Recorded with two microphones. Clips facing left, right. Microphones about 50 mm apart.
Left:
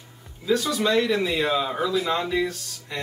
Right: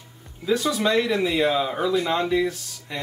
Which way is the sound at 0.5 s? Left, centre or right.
Centre.